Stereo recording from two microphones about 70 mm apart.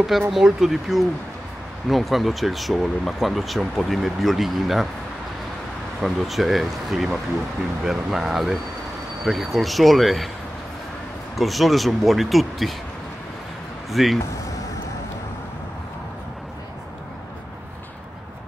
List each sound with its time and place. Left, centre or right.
0.3 s speech: centre
5.9 s speech: centre
11.3 s speech: centre
13.8 s speech: centre